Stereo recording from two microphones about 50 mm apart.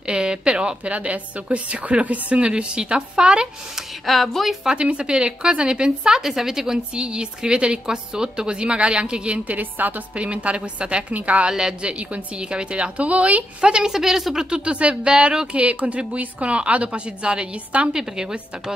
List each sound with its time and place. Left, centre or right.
0.0 s a woman's voice: centre
4.0 s speech: centre
4.6 s a woman's voice: right
10.1 s a woman's voice: right
11.5 s a woman's voice: centre
13.6 s a woman's voice: centre